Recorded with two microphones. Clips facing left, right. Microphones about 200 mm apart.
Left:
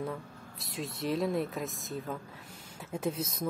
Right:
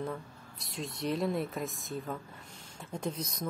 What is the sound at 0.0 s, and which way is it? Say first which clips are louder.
Speech: left 1 dB; centre (ahead or behind).